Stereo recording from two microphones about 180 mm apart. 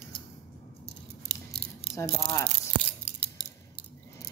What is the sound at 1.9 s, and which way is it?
Speech, 15° left (ahead or behind).